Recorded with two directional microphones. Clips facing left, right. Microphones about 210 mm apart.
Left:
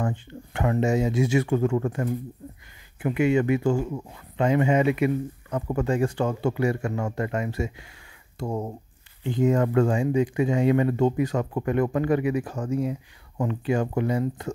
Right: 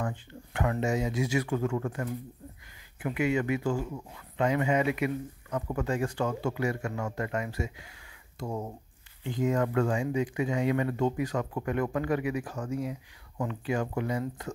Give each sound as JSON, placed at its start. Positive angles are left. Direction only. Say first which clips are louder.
{"t": 0.0, "sound": "speech", "louder": "left 6 dB", "side_deg": 25}
{"t": 8.5, "sound": "speech", "louder": "left 5 dB", "side_deg": 45}
{"t": 9.2, "sound": "speech", "louder": "left 6 dB", "side_deg": 25}